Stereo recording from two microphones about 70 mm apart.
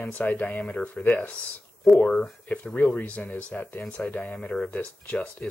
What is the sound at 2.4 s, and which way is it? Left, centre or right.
Speech, centre.